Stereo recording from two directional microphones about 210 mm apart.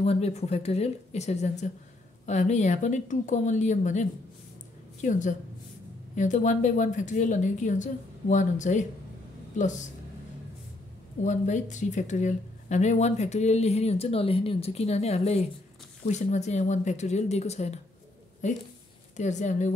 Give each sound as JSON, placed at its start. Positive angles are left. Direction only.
{"t": 0.0, "sound": "speech", "side_deg": 30}
{"t": 11.2, "sound": "speech", "side_deg": 35}